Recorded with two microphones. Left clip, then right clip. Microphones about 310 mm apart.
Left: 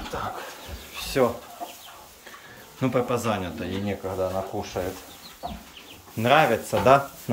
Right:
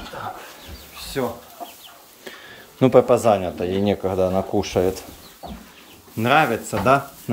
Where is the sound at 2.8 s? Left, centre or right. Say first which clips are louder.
Right 10 dB; right.